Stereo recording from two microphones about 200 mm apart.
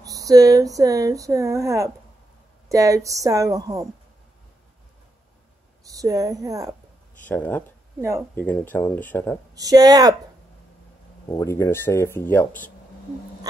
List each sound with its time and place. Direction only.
0.0 s speech: 15° right (ahead or behind)
5.9 s a woman's voice: 15° right (ahead or behind)
7.2 s speech: 10° left (ahead or behind)
8.0 s speech: 15° right (ahead or behind)
8.4 s speech: 10° left (ahead or behind)
9.6 s speech: 20° right (ahead or behind)
11.3 s speech: 15° left (ahead or behind)